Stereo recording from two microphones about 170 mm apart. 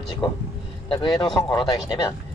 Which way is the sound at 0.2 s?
25° left (ahead or behind).